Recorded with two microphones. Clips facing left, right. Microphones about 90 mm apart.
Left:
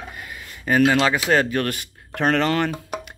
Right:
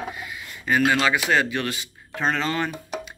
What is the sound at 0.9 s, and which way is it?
Speech, 35° left (ahead or behind).